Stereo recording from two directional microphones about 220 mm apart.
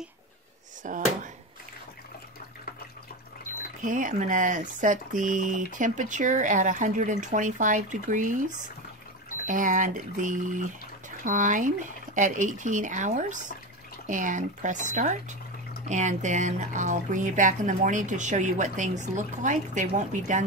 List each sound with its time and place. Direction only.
0.8 s speech: 35° right (ahead or behind)
3.8 s speech: 35° right (ahead or behind)